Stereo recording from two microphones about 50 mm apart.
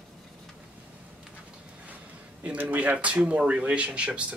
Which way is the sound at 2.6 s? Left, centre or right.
Right.